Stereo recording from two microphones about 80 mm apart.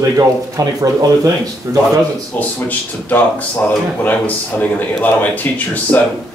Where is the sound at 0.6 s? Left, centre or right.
Right.